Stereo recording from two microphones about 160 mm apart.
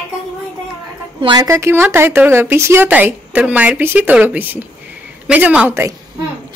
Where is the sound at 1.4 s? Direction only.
15° right (ahead or behind).